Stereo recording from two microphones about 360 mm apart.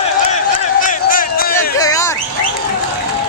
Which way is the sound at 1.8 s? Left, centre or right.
Centre.